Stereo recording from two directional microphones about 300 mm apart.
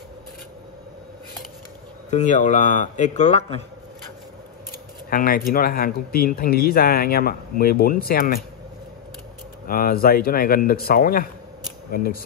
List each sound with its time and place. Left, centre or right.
2.0 s speech: left
5.1 s speech: left
9.7 s speech: left